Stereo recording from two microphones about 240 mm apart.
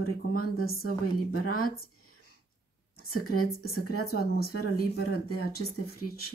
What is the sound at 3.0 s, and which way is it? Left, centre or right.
Speech, left.